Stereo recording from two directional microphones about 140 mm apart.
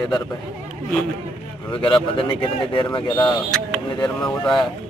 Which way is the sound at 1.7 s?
40° left (ahead or behind).